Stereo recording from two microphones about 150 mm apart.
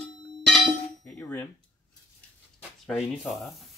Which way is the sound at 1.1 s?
15° left (ahead or behind).